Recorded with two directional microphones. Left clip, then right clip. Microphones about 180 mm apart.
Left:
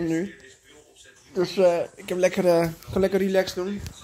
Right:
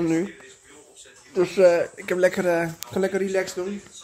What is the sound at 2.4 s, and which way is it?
Speech, 25° left (ahead or behind).